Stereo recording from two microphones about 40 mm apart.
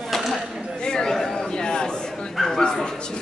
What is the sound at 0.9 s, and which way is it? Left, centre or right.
Chatter, centre.